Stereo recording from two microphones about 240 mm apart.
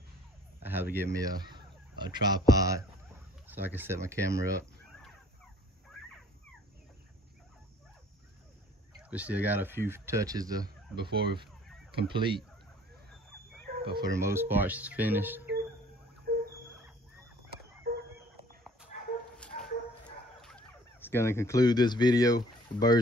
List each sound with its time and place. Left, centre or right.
0.6 s speech: centre
9.1 s speech: centre
11.1 s speech: right
12.1 s fowl: right
13.8 s speech: centre
16.3 s a sound: right
17.9 s a sound: right
18.9 s dog: left
19.3 s dog: centre
20.3 s speech: centre